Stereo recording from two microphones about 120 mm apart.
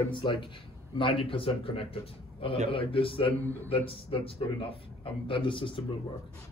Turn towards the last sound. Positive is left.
turn(degrees=45)  # may be behind; listen again after turning